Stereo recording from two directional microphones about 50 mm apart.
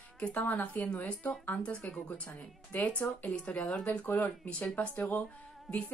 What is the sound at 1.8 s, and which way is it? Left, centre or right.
A woman's voice, left.